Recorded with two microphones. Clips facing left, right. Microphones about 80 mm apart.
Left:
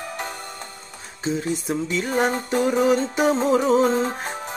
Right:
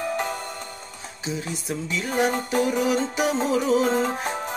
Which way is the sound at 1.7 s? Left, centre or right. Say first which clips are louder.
Left 4 dB; left.